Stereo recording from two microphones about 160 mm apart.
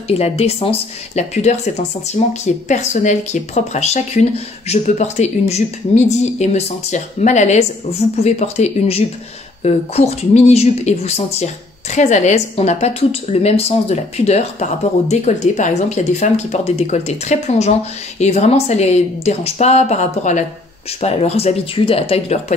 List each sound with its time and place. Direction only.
0.1 s speech: 40° left (ahead or behind)